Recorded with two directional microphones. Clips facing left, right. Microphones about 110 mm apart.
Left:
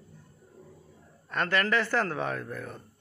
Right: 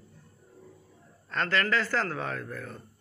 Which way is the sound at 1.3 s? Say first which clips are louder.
Left 1 dB; 15° left (ahead or behind).